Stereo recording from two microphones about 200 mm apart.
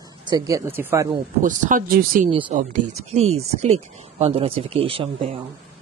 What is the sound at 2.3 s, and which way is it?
Speech, 25° right (ahead or behind).